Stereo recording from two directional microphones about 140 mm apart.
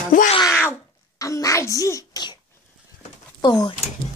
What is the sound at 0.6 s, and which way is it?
A child's voice, 20° left (ahead or behind).